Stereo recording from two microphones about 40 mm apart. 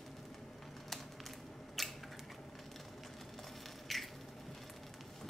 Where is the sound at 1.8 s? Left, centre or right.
Centre.